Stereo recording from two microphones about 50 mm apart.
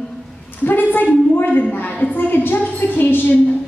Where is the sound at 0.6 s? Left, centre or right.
Left.